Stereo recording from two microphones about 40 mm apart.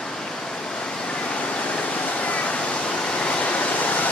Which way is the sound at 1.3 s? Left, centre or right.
Left.